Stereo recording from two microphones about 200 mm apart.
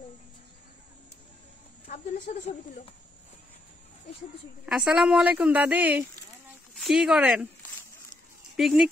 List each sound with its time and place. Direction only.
1.9 s a sound: 45° left (ahead or behind)
2.4 s speech: 35° left (ahead or behind)
4.6 s speech: 5° right (ahead or behind)
8.5 s speech: centre (ahead or behind)